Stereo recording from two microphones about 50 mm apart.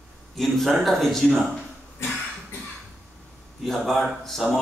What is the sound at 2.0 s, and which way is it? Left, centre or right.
Cough, left.